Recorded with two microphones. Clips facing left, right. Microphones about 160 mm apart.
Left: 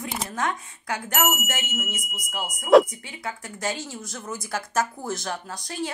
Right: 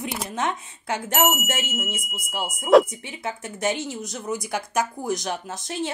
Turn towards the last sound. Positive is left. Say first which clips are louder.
# right 2 dB
turn(degrees=-25)  # may be behind; listen again after turning